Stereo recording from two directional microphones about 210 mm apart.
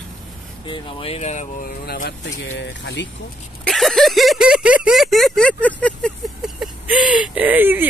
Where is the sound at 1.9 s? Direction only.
50° left (ahead or behind).